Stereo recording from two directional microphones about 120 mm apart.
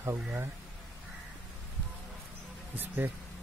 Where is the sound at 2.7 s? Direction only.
15° right (ahead or behind).